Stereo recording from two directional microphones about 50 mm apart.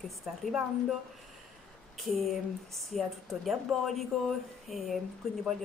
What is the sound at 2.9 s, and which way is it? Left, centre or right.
A woman's voice, centre.